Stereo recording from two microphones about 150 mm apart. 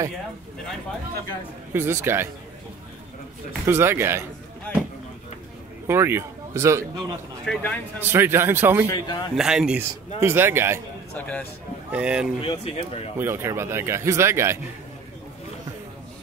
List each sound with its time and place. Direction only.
1.7 s speech: 15° right (ahead or behind)
3.6 s speech: 15° right (ahead or behind)
5.9 s speech: 15° right (ahead or behind)
7.4 s speech: 10° left (ahead or behind)
8.0 s speech: 15° right (ahead or behind)
8.9 s a man's voice: 25° left (ahead or behind)
9.3 s speech: 5° right (ahead or behind)
11.1 s speech: 10° left (ahead or behind)
11.9 s speech: 5° right (ahead or behind)
12.4 s speech: 40° left (ahead or behind)
13.2 s speech: 15° right (ahead or behind)